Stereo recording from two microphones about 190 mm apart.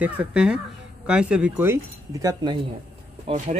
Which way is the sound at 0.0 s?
5° right (ahead or behind).